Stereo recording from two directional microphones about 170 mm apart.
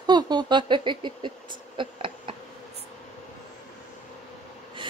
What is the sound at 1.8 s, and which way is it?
Insect, 30° right (ahead or behind).